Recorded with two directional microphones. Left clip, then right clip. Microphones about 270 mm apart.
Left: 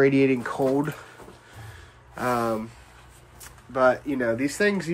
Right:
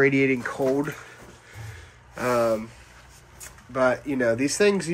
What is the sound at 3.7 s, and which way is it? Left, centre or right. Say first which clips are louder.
Speech: left 1 dB; centre.